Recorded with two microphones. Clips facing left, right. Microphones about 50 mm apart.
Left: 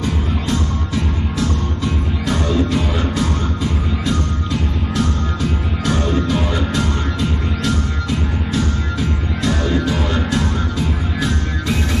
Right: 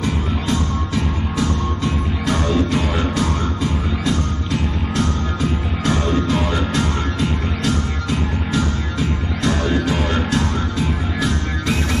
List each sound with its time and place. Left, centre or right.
2.5 s music: right
6.7 s music: right
9.4 s music: right